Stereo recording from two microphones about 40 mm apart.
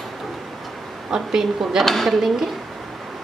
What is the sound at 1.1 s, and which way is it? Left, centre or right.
Speech, centre.